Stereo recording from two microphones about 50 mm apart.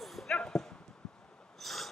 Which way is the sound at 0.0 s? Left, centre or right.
Centre.